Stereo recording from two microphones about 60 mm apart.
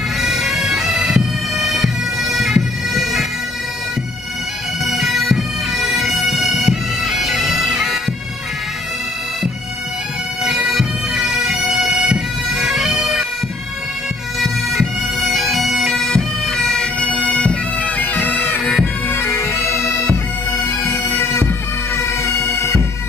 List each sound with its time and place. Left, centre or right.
0.2 s bagpipes: centre
4.8 s bagpipes: centre
10.4 s bagpipes: centre
14.4 s bagpipes: centre
17.7 s bagpipes: left
18.3 s bagpipes: left
21.2 s bagpipes: left